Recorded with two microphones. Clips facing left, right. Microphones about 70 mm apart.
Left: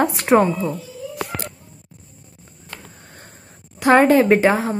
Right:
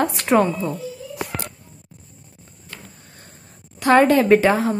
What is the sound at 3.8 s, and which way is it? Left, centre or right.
Speech, centre.